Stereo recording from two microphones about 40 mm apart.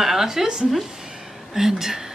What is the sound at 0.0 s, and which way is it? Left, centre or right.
A woman's voice, centre.